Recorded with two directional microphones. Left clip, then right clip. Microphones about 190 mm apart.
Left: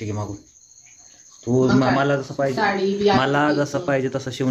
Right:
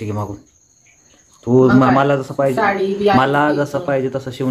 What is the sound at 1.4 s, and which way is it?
Speech, 20° right (ahead or behind).